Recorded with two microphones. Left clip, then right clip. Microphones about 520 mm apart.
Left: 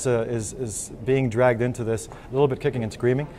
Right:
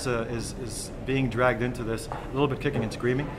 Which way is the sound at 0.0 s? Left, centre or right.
Left.